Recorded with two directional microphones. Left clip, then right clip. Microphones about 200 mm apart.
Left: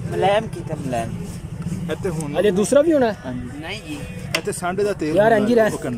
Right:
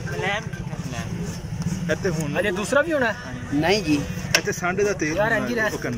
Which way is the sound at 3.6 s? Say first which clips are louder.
Right 12 dB; 40° right (ahead or behind).